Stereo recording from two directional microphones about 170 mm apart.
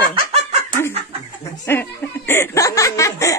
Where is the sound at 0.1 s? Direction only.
35° right (ahead or behind).